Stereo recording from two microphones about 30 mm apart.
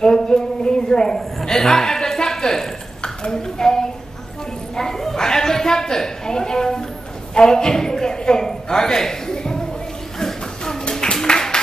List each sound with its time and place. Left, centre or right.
0.0 s a woman's voice: left
1.1 s a woman's voice: centre
4.7 s a sound: centre